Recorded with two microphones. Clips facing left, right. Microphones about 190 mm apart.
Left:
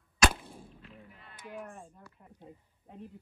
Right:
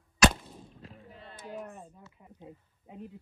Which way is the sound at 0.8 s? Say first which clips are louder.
Right 4 dB; 40° right (ahead or behind).